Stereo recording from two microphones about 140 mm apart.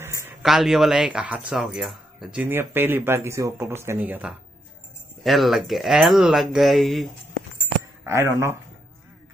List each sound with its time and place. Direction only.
0.0 s a sound: 20° right (ahead or behind)
0.4 s speech: centre (ahead or behind)
2.4 s speech: 15° right (ahead or behind); by 7.1 s centre (ahead or behind)
8.0 s speech: 20° right (ahead or behind)